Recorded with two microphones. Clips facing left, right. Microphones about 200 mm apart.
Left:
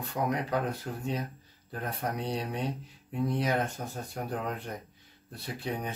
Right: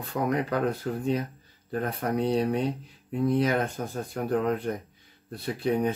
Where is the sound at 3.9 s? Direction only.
55° right (ahead or behind).